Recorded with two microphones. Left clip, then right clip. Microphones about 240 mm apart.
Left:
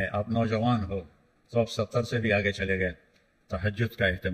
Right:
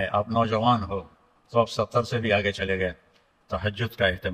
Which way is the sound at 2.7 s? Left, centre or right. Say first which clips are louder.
Right 2 dB; right.